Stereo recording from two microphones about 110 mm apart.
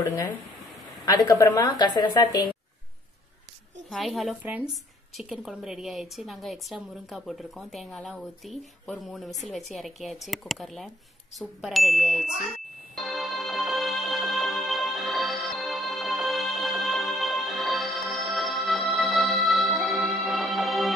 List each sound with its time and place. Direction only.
1.0 s a woman's voice: 35° left (ahead or behind)
3.9 s a woman's voice: centre (ahead or behind)
12.9 s music: centre (ahead or behind)